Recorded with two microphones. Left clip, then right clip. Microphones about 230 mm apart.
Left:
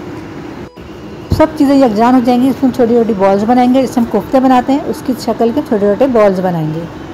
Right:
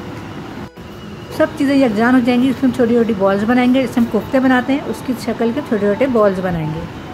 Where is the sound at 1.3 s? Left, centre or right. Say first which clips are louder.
Left 5 dB; centre.